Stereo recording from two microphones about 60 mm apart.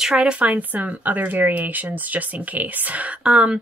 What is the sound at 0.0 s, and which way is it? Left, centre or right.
Speech, centre.